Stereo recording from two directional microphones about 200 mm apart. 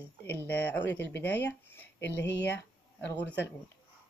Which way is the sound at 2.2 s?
60° left (ahead or behind).